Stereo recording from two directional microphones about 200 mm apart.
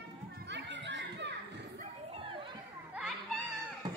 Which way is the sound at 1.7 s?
25° right (ahead or behind).